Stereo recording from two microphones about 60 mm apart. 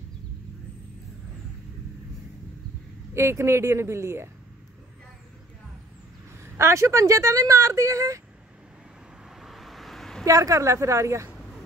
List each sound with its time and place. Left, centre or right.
3.2 s speech: right
6.4 s speech: right
9.4 s vehicle: centre
10.2 s speech: right